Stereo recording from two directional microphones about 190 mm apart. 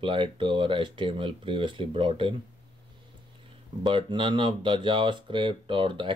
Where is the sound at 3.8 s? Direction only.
25° right (ahead or behind).